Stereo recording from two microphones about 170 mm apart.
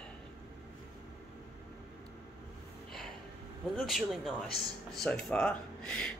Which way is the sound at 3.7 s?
Centre (ahead or behind).